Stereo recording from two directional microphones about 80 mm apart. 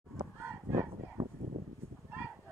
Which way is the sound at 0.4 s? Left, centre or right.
Right.